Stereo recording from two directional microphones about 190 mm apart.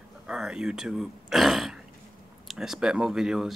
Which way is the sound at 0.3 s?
5° right (ahead or behind).